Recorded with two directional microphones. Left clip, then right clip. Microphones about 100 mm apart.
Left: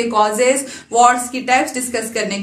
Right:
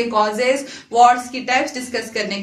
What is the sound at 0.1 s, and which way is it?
Speech, 35° left (ahead or behind).